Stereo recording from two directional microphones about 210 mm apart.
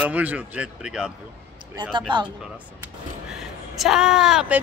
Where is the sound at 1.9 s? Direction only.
20° right (ahead or behind).